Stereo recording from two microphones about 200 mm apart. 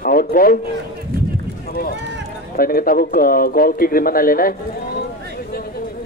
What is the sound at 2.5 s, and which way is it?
Speech, 45° left (ahead or behind).